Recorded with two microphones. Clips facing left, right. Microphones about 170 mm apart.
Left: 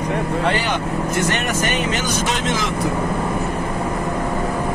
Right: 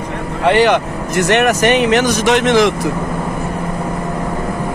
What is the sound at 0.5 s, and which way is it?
Speech, 75° right (ahead or behind).